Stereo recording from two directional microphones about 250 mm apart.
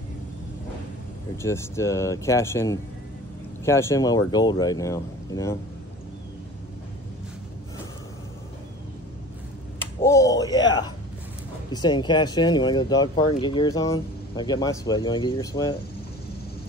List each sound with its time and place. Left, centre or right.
1.4 s speech: centre
9.8 s a sound: centre
11.7 s speech: centre